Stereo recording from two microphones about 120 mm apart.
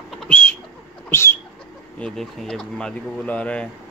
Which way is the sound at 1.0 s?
20° left (ahead or behind).